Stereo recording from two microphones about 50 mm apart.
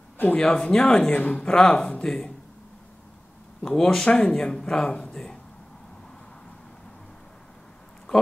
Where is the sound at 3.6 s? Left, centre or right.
Centre.